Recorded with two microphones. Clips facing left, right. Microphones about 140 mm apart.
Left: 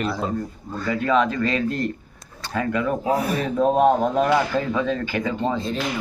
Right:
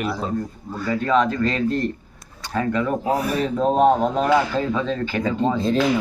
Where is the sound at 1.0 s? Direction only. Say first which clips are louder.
Right 1 dB; 40° right (ahead or behind).